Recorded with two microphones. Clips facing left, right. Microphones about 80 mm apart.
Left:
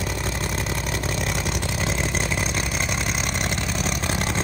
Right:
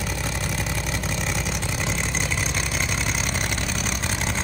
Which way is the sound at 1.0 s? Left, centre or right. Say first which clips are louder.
Left 1 dB; left.